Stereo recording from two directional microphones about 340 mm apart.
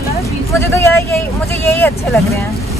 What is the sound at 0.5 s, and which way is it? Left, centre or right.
Speech, centre.